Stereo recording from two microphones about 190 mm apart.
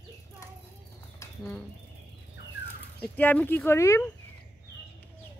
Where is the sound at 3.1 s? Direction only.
10° left (ahead or behind).